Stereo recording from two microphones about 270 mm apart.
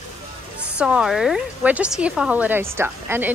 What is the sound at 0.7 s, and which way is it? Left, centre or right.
A woman's voice, centre.